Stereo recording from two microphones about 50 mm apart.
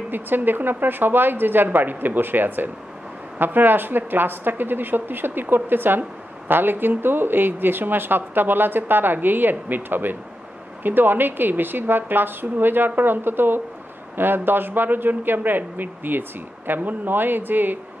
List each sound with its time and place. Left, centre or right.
0.1 s speech: right